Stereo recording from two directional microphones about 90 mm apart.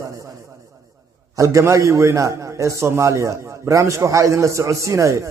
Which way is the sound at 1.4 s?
35° right (ahead or behind).